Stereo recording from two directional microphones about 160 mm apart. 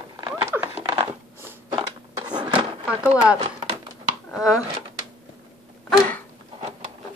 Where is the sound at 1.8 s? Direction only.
30° right (ahead or behind).